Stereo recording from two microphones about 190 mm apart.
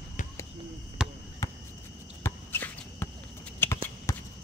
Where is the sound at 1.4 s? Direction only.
20° left (ahead or behind).